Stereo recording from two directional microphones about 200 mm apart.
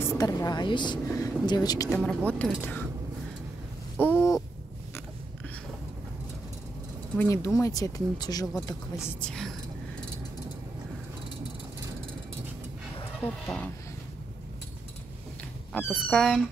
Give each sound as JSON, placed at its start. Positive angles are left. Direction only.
{"t": 0.0, "sound": "speech", "side_deg": 15}
{"t": 1.9, "sound": "speech", "side_deg": 5}
{"t": 4.0, "sound": "owl", "side_deg": 10}
{"t": 7.2, "sound": "speech", "side_deg": 15}
{"t": 8.9, "sound": "speech", "side_deg": 5}
{"t": 13.2, "sound": "speech", "side_deg": 5}
{"t": 15.7, "sound": "speech", "side_deg": 5}